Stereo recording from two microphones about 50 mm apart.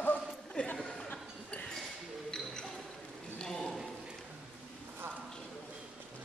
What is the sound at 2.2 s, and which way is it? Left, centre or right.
Music, centre.